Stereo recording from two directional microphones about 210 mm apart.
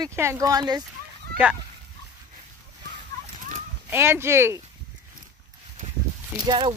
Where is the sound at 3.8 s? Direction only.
10° right (ahead or behind).